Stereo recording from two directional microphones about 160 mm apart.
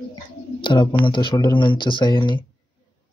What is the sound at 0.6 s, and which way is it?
Speech, 30° left (ahead or behind).